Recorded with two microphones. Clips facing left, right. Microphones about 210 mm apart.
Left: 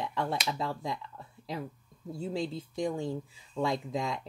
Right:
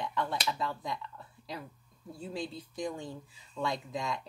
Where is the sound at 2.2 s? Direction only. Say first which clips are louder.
Left 5 dB; 25° left (ahead or behind).